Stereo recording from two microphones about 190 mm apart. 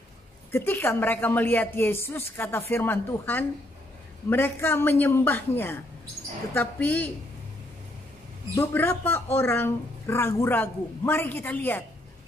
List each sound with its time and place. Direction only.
0.5 s speech: 10° left (ahead or behind)
8.5 s speech: 10° left (ahead or behind)